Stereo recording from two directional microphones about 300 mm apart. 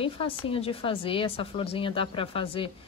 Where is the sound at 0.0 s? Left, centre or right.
Centre.